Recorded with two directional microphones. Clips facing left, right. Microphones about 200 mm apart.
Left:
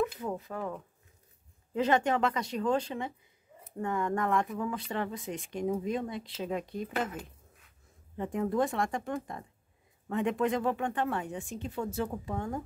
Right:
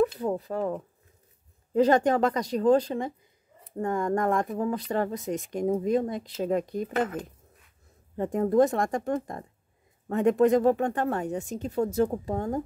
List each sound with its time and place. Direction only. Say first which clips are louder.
0.2 s speech: right 7 dB; 35° right (ahead or behind)